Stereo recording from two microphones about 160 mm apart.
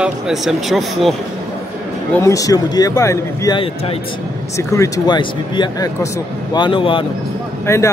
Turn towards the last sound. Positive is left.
turn(degrees=20)  # may be behind; listen again after turning